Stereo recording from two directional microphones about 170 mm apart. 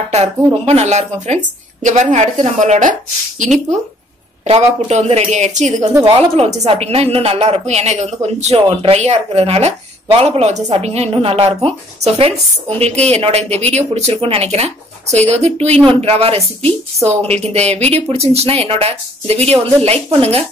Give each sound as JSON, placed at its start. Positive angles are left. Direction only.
{"t": 0.1, "sound": "a woman's voice", "side_deg": -40}
{"t": 4.5, "sound": "a woman's voice", "side_deg": -40}